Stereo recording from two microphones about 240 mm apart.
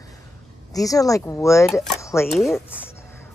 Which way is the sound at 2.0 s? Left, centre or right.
Centre.